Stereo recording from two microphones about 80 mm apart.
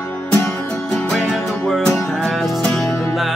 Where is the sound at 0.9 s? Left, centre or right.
Centre.